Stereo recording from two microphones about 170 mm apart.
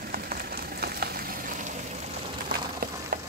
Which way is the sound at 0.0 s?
60° right (ahead or behind).